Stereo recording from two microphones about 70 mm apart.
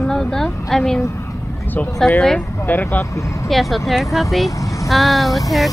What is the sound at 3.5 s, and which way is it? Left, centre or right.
Speech, centre.